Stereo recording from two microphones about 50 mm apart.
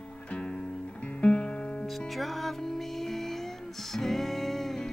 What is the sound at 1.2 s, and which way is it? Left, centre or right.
Music, left.